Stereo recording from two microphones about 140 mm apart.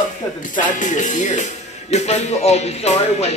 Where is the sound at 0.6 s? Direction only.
60° left (ahead or behind).